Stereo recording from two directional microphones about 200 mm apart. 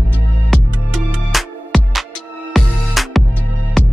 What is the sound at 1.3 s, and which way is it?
Music, centre (ahead or behind).